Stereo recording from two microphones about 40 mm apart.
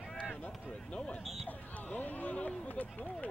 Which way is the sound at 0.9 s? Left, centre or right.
Left.